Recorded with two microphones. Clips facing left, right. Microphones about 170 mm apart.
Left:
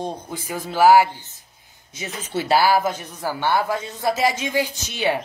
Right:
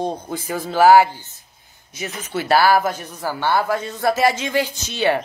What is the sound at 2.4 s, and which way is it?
A man's voice, 15° left (ahead or behind).